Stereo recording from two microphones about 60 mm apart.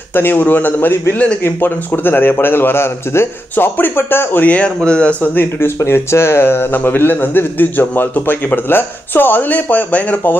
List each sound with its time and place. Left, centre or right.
0.1 s a man's voice: left; by 5.3 s centre
5.3 s a man's voice: left
5.8 s a man's voice: left